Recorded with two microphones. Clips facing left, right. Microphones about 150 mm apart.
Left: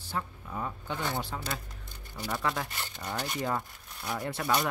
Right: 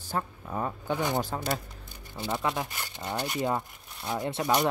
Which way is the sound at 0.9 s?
15° right (ahead or behind).